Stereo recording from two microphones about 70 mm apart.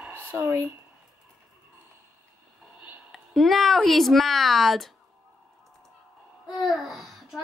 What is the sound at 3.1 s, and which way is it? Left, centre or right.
Speech, centre.